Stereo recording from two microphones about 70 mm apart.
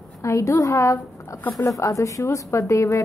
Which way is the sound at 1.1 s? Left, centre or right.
Left.